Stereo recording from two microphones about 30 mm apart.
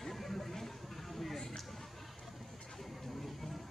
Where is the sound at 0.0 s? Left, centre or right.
Centre.